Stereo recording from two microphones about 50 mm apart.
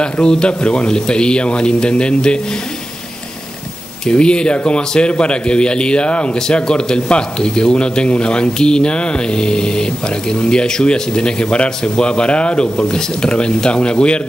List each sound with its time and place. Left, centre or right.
0.0 s a man's voice: centre
4.0 s a man's voice: centre